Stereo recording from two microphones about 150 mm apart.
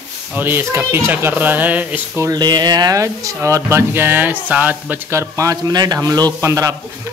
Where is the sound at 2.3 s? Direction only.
25° right (ahead or behind).